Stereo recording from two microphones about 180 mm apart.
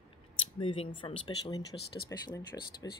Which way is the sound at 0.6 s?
30° left (ahead or behind).